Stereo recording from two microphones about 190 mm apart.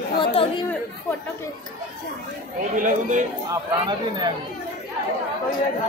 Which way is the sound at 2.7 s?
40° right (ahead or behind).